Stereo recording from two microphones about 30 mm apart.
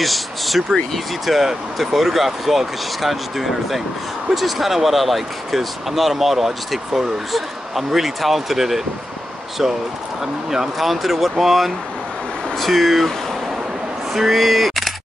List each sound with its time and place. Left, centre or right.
0.0 s a sound: centre
0.9 s speech: centre
10.2 s speech: centre
10.8 s speech: centre
14.1 s speech: centre